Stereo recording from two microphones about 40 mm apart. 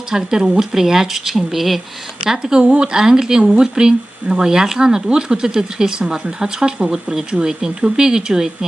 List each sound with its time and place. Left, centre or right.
0.1 s speech: centre
2.2 s speech: centre